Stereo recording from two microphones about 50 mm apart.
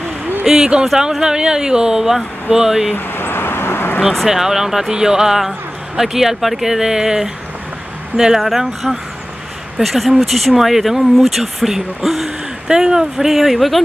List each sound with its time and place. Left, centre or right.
0.4 s speech: centre
2.9 s vehicle: left
4.3 s speech: centre